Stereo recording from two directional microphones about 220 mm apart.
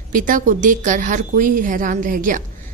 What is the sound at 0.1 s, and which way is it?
A woman's voice, 35° right (ahead or behind).